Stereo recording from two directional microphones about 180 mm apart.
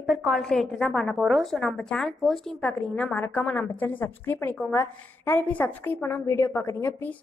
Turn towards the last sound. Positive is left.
turn(degrees=10)  # may be behind; listen again after turning